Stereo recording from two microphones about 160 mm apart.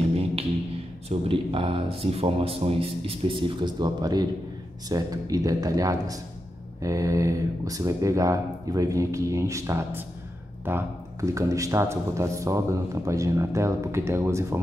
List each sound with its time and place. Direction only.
1.0 s speech: 35° right (ahead or behind); by 14.6 s 15° right (ahead or behind)